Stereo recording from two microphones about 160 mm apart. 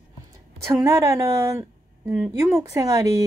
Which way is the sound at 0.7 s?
15° right (ahead or behind).